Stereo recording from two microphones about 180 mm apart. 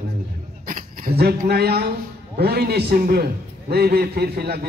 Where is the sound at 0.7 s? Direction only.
50° right (ahead or behind).